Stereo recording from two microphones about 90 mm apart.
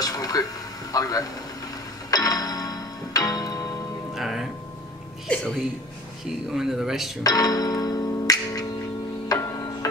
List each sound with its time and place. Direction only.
0.0 s a sound: 45° left (ahead or behind)
0.9 s a man's voice: 45° left (ahead or behind)
2.0 s music: 45° left (ahead or behind)
4.1 s music: 5° right (ahead or behind)
5.3 s a sound: 15° left (ahead or behind)
6.2 s speech: 5° right (ahead or behind)
7.2 s music: 45° left (ahead or behind)